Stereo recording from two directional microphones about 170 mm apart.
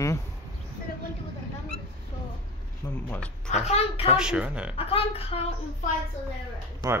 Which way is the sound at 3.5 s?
40° left (ahead or behind).